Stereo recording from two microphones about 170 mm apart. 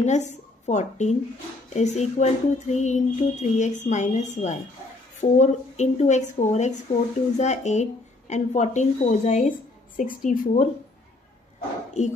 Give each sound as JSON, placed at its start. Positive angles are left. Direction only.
{"t": 0.0, "sound": "a woman's voice", "side_deg": 45}